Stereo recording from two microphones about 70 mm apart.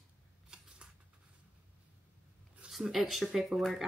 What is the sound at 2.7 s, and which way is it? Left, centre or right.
Speech, centre.